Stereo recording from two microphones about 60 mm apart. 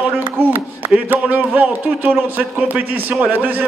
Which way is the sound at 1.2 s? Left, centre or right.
Right.